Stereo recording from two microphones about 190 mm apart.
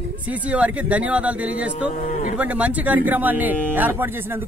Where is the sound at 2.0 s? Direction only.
40° left (ahead or behind).